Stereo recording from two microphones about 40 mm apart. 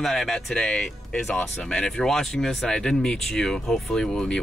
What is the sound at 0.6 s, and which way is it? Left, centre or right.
Speech, left.